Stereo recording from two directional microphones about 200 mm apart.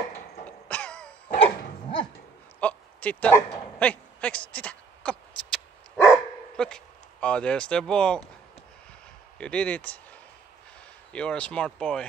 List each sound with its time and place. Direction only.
0.5 s cough: 5° left (ahead or behind)
1.4 s dog: 25° left (ahead or behind)
2.6 s a sound: 5° left (ahead or behind)
6.0 s dog: 5° left (ahead or behind)
9.4 s speech: 5° left (ahead or behind)
11.1 s speech: 5° left (ahead or behind)